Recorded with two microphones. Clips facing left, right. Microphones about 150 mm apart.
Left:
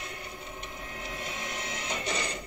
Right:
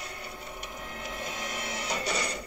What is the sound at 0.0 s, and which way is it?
Printer, 35° right (ahead or behind).